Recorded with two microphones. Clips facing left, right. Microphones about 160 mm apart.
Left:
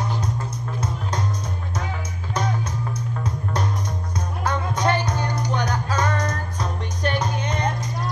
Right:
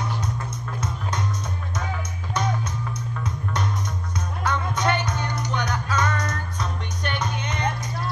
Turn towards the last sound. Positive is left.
turn(degrees=35)  # may be behind; listen again after turning